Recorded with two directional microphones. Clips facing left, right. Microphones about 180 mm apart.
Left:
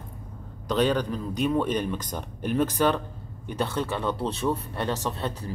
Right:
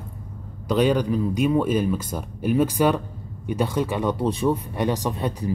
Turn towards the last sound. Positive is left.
turn(degrees=-15)  # may be behind; listen again after turning